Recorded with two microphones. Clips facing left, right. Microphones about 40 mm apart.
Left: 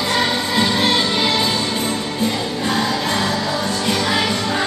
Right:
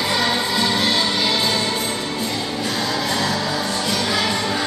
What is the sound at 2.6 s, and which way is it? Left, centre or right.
Music, left.